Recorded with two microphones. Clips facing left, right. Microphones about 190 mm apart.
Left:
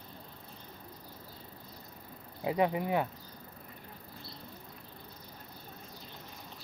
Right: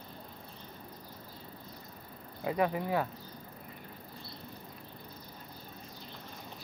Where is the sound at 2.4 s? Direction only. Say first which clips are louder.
Left 1 dB; 20° left (ahead or behind).